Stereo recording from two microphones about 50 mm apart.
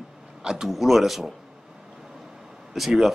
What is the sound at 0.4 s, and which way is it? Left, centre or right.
Speech, centre.